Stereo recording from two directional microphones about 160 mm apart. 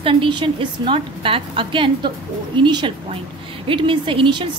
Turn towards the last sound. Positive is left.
turn(degrees=-30)  # may be behind; listen again after turning